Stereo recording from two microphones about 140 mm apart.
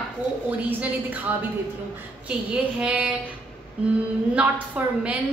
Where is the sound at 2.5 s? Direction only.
10° right (ahead or behind).